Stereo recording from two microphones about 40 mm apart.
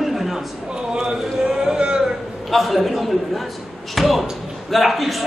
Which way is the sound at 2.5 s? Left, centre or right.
Centre.